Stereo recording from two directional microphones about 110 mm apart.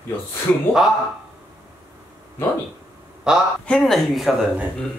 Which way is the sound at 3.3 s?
5° right (ahead or behind).